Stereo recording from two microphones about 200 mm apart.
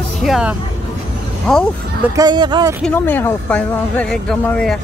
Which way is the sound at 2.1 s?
20° right (ahead or behind).